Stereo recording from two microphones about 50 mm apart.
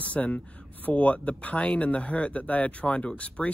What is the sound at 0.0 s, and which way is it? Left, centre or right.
Speech, left.